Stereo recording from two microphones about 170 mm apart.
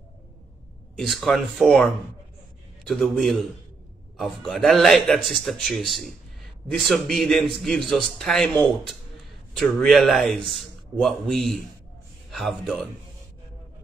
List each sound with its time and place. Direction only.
0.9 s a man's voice: centre (ahead or behind)
2.9 s a man's voice: centre (ahead or behind)